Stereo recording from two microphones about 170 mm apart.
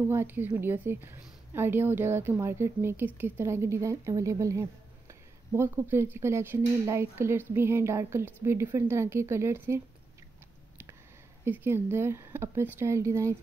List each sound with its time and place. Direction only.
0.1 s a woman's voice: 15° right (ahead or behind)
11.4 s a woman's voice: 15° right (ahead or behind)